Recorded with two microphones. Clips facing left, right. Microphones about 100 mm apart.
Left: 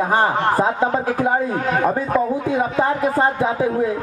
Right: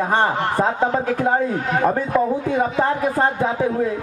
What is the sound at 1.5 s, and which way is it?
Speech, 50° left (ahead or behind).